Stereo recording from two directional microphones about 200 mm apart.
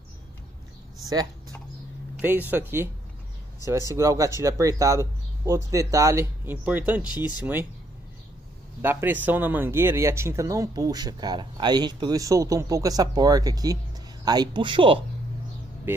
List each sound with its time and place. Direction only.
2.2 s speech: 10° right (ahead or behind)
3.9 s speech: 15° right (ahead or behind)
8.8 s speech: 10° right (ahead or behind); by 15.0 s 25° right (ahead or behind)